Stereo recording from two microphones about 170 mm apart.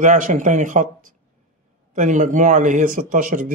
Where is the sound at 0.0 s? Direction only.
45° right (ahead or behind).